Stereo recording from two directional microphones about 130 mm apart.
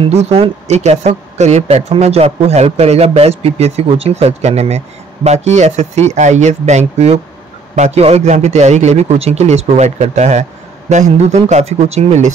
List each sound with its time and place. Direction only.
0.0 s speech: 55° right (ahead or behind)